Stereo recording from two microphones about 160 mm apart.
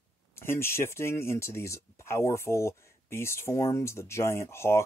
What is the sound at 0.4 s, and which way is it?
Speech, 15° left (ahead or behind).